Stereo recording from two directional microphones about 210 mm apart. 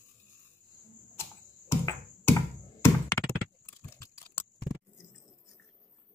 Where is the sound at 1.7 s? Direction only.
10° left (ahead or behind).